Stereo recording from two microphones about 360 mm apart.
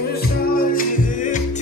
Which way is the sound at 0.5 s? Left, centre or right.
Left.